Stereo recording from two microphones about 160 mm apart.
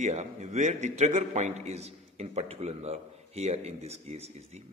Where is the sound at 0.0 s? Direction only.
45° right (ahead or behind).